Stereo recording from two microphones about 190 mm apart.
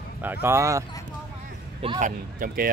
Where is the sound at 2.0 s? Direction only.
45° right (ahead or behind).